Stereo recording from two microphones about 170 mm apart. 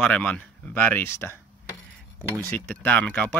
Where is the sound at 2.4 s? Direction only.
10° left (ahead or behind).